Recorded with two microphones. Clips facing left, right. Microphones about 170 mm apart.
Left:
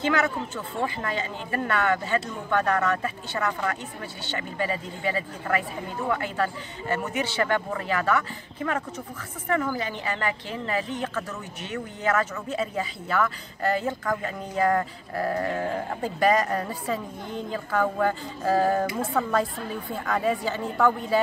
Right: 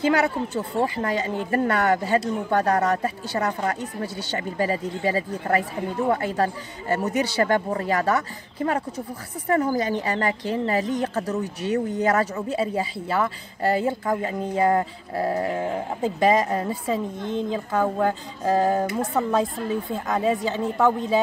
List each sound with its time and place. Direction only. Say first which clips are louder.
0.1 s a woman's voice: right 4 dB; 35° right (ahead or behind)
15.5 s a woman's voice: right 2 dB; 15° right (ahead or behind)